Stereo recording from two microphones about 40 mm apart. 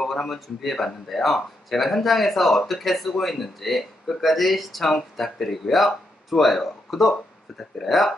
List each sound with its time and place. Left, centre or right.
0.3 s speech: centre